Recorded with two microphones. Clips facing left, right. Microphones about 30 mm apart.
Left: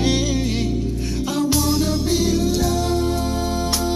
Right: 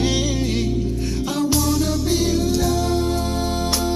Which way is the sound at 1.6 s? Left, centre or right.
Left.